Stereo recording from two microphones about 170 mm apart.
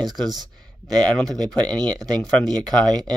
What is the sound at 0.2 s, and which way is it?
Speech, 25° right (ahead or behind).